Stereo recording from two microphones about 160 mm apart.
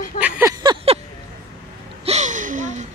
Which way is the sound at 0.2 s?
15° right (ahead or behind).